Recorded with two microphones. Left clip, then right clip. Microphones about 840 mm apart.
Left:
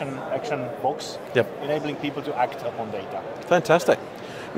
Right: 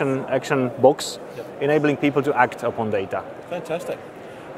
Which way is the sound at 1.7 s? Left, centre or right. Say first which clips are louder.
Right 7 dB; right.